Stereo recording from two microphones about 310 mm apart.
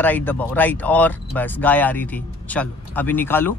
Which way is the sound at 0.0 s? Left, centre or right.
Centre.